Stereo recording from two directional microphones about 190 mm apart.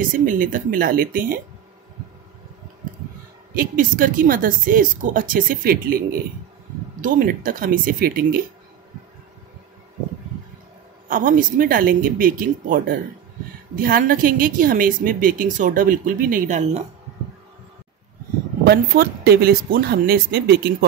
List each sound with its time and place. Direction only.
0.1 s a woman's voice: 45° right (ahead or behind)
3.5 s a woman's voice: 45° right (ahead or behind)
11.1 s a woman's voice: 45° right (ahead or behind)
18.6 s speech: 55° right (ahead or behind)